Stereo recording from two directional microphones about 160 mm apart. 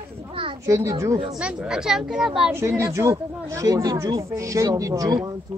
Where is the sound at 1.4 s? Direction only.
5° right (ahead or behind).